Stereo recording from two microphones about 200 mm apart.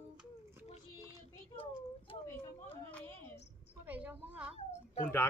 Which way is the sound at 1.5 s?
25° left (ahead or behind).